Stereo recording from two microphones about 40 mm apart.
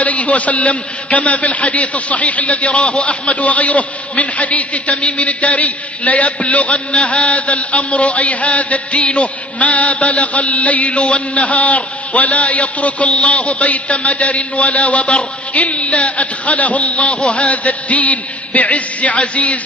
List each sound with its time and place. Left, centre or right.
0.0 s a man's voice: left
17.0 s a man's voice: left
17.3 s a man's voice: left